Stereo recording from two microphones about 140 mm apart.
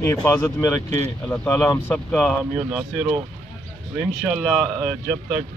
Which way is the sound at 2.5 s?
5° right (ahead or behind).